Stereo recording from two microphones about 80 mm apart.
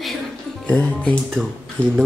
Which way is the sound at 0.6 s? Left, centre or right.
Centre.